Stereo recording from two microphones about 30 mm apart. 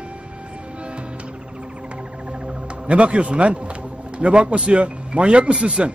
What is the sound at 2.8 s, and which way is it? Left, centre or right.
A woman's voice, right.